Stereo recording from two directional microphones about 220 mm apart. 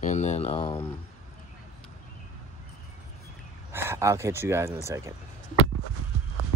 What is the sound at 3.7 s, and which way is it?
Speech, 10° right (ahead or behind).